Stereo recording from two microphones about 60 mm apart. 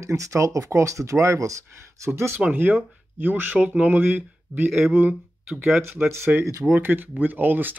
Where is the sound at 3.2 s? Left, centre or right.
Right.